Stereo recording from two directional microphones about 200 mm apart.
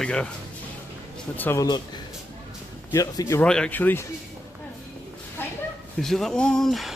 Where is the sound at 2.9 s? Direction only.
15° left (ahead or behind).